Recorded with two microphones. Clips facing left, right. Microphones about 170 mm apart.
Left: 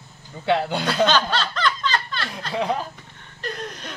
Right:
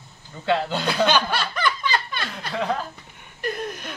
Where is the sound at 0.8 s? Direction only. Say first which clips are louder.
Left 1 dB; 10° right (ahead or behind).